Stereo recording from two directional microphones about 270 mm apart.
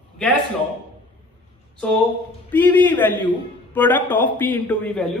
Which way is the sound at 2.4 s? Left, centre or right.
Centre.